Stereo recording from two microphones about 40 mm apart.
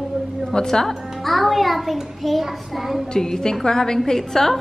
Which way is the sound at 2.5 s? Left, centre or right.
Centre.